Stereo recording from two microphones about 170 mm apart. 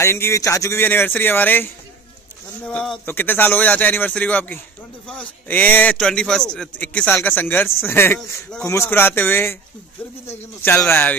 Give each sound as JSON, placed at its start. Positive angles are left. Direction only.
{"t": 0.0, "sound": "a man's voice", "side_deg": 15}
{"t": 10.6, "sound": "a man's voice", "side_deg": 15}